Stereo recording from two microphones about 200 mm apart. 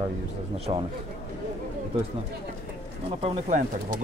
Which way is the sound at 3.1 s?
35° right (ahead or behind).